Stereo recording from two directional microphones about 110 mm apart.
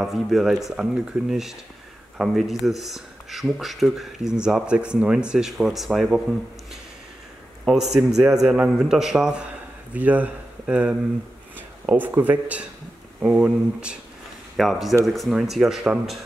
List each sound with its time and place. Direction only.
0.0 s speech: centre (ahead or behind)
7.6 s speech: 5° right (ahead or behind)